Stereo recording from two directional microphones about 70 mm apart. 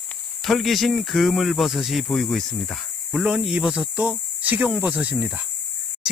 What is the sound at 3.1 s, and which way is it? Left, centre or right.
Speech, centre.